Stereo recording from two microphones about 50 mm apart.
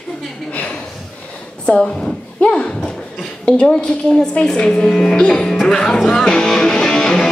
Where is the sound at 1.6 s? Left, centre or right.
Centre.